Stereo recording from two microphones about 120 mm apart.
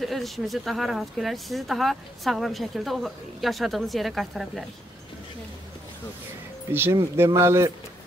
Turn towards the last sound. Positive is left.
turn(degrees=-25)  # may be behind; listen again after turning